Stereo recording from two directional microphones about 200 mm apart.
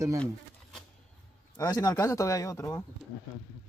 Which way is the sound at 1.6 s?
15° left (ahead or behind).